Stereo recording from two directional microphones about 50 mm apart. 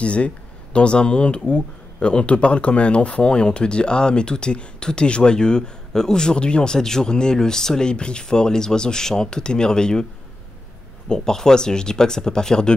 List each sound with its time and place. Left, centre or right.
0.0 s speech: left
11.1 s speech: centre